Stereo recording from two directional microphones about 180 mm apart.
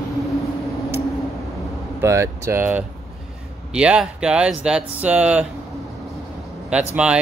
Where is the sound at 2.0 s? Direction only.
15° right (ahead or behind).